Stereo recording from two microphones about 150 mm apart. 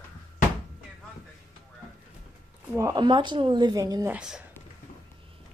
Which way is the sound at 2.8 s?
25° right (ahead or behind).